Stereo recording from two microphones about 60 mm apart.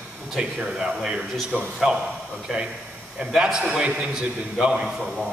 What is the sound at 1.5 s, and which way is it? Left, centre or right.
Speech, right.